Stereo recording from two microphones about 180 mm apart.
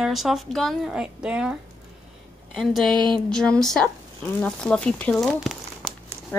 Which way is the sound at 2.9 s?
25° right (ahead or behind).